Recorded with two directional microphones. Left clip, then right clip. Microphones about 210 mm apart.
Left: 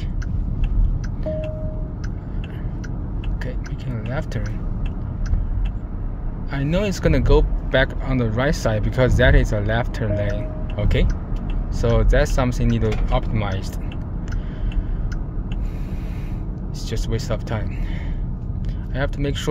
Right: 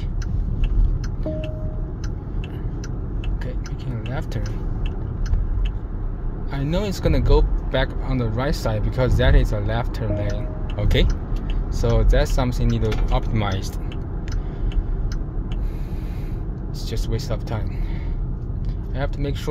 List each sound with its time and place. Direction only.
3.9 s music: 15° left (ahead or behind)
6.5 s speech: 10° left (ahead or behind)
13.3 s speech: centre (ahead or behind)
16.9 s speech: 15° left (ahead or behind)
18.9 s speech: 15° left (ahead or behind)